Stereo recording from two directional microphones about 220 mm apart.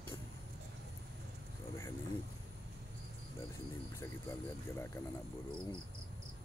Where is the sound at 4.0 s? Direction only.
10° left (ahead or behind).